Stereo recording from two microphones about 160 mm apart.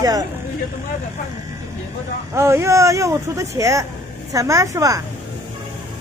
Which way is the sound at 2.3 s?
15° right (ahead or behind).